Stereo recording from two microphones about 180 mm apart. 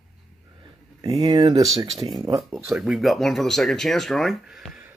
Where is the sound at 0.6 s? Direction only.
20° right (ahead or behind).